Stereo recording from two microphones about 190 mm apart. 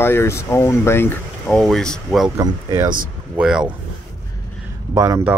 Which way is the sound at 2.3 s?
15° right (ahead or behind).